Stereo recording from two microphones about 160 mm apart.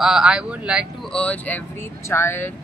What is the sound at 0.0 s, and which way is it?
Speech, 5° right (ahead or behind).